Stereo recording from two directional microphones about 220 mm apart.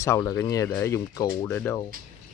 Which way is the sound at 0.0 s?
15° left (ahead or behind).